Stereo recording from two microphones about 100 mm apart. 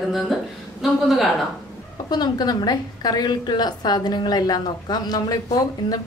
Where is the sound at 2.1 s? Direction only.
45° left (ahead or behind).